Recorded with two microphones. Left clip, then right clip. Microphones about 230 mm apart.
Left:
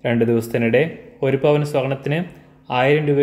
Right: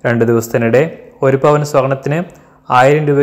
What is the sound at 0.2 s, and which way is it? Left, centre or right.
Speech, centre.